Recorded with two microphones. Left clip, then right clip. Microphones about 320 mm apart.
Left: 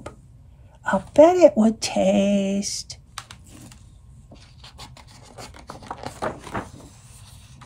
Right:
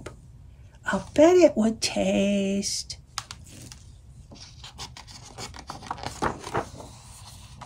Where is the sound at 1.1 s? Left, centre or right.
Centre.